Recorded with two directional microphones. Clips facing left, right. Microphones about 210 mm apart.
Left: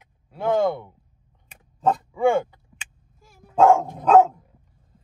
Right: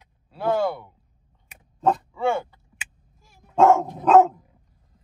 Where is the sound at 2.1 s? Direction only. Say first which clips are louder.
Left 5 dB; 20° left (ahead or behind).